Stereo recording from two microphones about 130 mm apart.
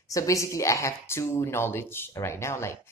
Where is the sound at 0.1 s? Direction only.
25° left (ahead or behind).